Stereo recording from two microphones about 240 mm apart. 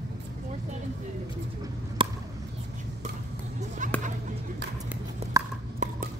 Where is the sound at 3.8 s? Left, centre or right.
Right.